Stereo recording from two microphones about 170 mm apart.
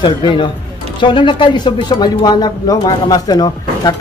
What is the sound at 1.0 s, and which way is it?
Speech, 30° left (ahead or behind).